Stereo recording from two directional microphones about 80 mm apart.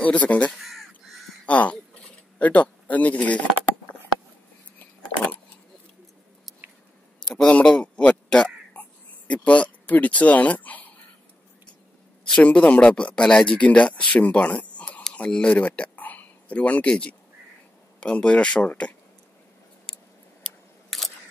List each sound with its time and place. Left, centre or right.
0.0 s speech: centre
0.6 s crow: centre
1.4 s a sound: centre
2.3 s speech: centre
4.7 s a sound: centre
7.4 s a sound: centre
12.3 s speech: centre
19.9 s scissors: centre
20.4 s camera: centre